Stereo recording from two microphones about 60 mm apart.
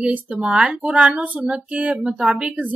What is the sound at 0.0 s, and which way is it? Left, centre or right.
A woman's voice, right.